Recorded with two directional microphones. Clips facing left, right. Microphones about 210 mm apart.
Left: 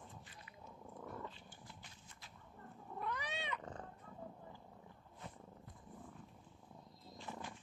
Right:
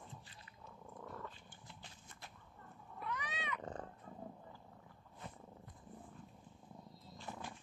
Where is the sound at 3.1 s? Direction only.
35° left (ahead or behind).